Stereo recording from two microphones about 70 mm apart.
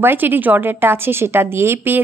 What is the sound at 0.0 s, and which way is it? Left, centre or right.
A woman's voice, right.